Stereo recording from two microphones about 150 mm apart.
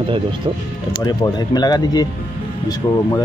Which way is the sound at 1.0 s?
30° left (ahead or behind).